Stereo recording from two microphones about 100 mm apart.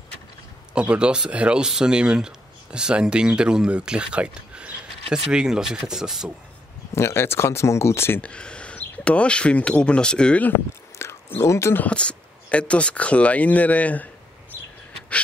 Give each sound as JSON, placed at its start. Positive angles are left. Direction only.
{"t": 0.7, "sound": "speech", "side_deg": -10}
{"t": 6.9, "sound": "speech", "side_deg": 25}
{"t": 8.2, "sound": "speech", "side_deg": 10}
{"t": 11.0, "sound": "a sound", "side_deg": 25}
{"t": 11.8, "sound": "speech", "side_deg": 10}